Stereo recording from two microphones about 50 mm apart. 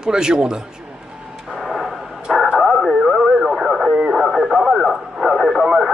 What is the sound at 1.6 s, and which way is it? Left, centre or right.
Tick-tock, centre.